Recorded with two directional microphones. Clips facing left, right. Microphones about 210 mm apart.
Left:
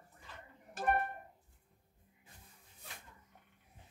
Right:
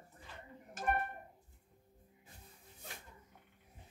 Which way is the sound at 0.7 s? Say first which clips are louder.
Left 3 dB; 35° left (ahead or behind).